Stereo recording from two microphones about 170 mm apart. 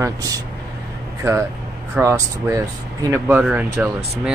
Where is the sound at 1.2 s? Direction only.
20° right (ahead or behind).